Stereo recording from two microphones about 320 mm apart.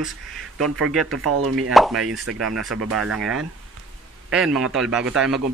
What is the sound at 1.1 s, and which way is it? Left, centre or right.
Speech, right.